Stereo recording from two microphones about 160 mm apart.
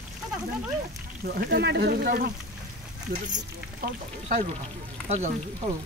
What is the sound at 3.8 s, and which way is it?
Speech, 60° right (ahead or behind).